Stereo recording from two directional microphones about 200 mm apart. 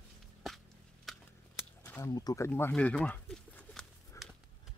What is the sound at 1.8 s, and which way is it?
Speech, 15° left (ahead or behind).